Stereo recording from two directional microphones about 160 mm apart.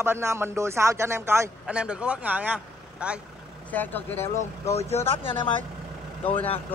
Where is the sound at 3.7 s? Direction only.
10° left (ahead or behind).